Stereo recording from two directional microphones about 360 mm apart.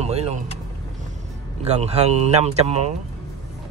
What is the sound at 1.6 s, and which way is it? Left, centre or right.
Speech, centre.